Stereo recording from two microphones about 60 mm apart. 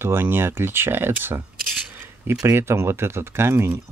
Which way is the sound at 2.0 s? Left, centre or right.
Right.